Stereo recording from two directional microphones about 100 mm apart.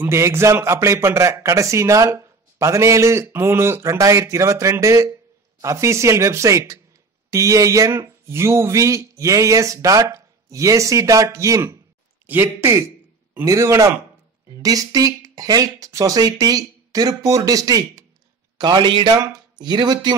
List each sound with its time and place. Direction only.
0.0 s a man's voice: 25° right (ahead or behind)
18.6 s a man's voice: 50° right (ahead or behind)